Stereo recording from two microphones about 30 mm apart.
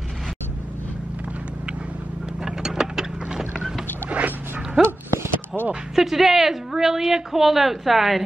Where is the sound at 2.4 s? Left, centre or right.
Centre.